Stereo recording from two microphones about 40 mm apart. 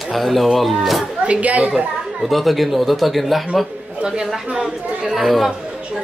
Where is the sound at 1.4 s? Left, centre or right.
Right.